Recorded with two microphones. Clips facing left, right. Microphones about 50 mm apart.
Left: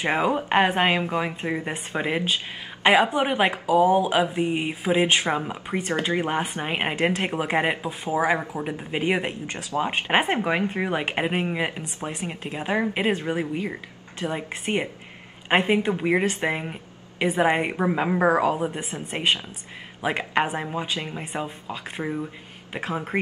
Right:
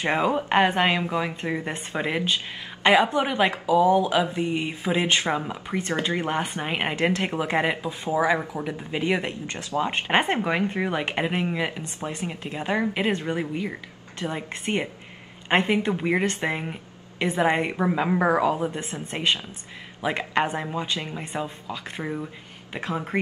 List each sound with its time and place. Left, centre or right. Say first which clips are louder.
0.1 s a woman's voice: even; centre; by 4.5 s left
4.5 s a woman's voice: left 2 dB; centre
19.1 s a woman's voice: left 1 dB; left